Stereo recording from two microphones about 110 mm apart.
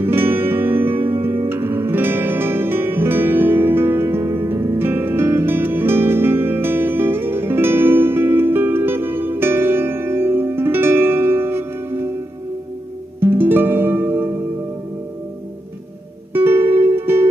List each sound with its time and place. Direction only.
0.0 s music: 20° right (ahead or behind)
13.2 s music: 20° right (ahead or behind)
16.3 s music: 20° right (ahead or behind)